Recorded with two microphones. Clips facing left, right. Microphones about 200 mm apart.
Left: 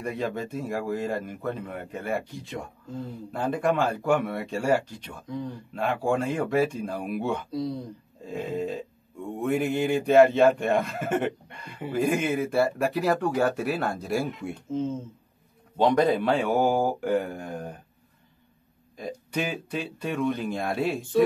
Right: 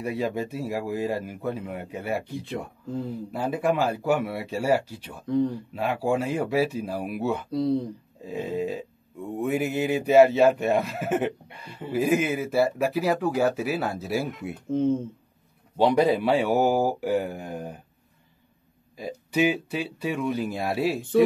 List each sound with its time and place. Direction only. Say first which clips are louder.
0.0 s speech: right 2 dB; 10° right (ahead or behind)
3.3 s speech: even; 5° right (ahead or behind)
14.7 s speech: right 6 dB; 60° right (ahead or behind)
15.8 s speech: right 1 dB; 10° right (ahead or behind)
18.9 s speech: right 5 dB; 5° right (ahead or behind)